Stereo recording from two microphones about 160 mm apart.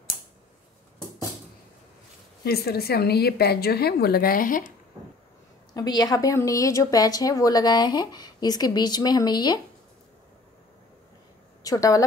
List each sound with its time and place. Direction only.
2.4 s a woman's voice: 75° left (ahead or behind); by 4.6 s 60° left (ahead or behind)
5.8 s speech: 25° left (ahead or behind)
11.6 s speech: 20° left (ahead or behind)